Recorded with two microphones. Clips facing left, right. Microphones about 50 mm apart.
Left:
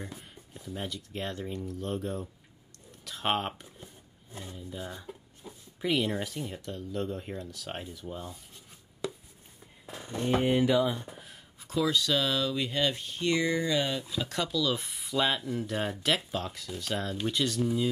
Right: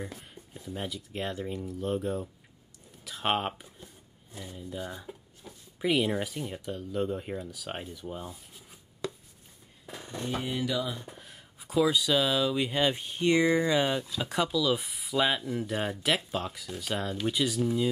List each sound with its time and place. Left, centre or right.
0.0 s speech: centre
3.8 s roaring cats: left
4.7 s speech: centre
5.4 s a sound: centre
5.8 s speech: centre
9.0 s a sound: centre
10.1 s speech: left
11.6 s speech: centre